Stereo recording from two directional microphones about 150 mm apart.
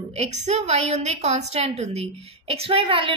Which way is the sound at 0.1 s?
45° right (ahead or behind).